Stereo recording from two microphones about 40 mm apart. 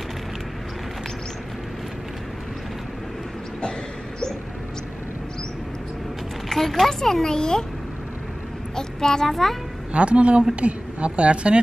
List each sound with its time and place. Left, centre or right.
6.5 s speech: centre
8.7 s a child's voice: centre
9.9 s a woman's voice: right